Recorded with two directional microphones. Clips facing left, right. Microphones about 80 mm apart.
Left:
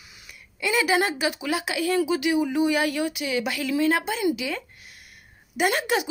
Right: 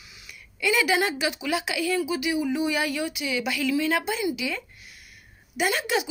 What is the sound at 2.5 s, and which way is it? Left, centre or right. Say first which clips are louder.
Speech: left 3 dB; left.